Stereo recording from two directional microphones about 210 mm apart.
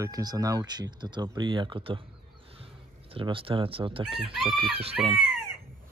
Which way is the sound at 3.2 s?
25° right (ahead or behind).